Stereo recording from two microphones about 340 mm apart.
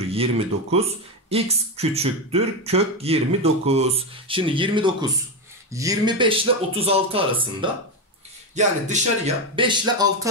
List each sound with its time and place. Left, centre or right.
0.1 s speech: centre